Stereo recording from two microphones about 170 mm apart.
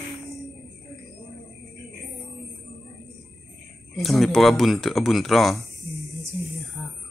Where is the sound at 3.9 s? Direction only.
Centre (ahead or behind).